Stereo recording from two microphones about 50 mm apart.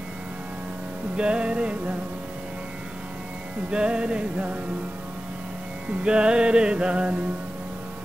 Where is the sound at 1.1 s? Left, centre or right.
Right.